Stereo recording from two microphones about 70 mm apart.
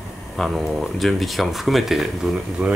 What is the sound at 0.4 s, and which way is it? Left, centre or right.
Speech, centre.